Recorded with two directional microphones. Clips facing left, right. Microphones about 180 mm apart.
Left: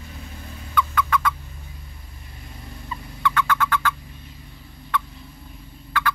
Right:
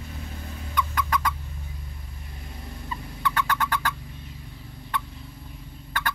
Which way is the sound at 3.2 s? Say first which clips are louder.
Left 4 dB; 35° right (ahead or behind).